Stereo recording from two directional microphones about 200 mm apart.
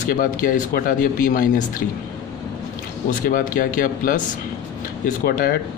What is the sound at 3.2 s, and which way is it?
Speech, 40° left (ahead or behind).